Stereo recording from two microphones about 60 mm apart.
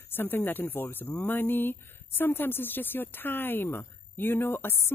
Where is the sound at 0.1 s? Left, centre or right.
Left.